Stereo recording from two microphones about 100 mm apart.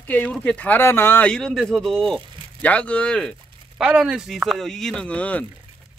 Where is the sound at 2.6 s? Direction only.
15° left (ahead or behind).